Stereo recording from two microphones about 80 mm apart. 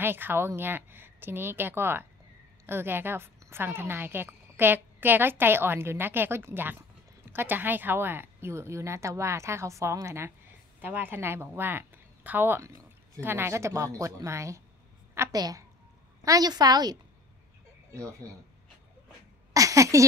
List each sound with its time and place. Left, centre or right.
0.0 s a woman's voice: right
10.8 s a woman's voice: right
15.3 s a woman's voice: right
19.5 s a sound: right